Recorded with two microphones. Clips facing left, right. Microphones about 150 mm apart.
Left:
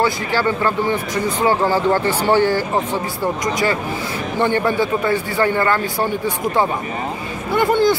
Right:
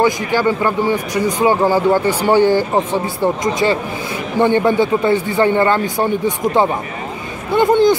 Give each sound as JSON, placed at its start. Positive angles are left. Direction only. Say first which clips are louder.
{"t": 0.0, "sound": "a man's voice", "louder": "right 3 dB", "side_deg": -15}